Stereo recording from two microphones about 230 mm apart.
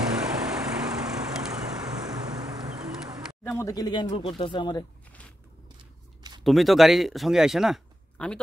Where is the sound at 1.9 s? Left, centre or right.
Centre.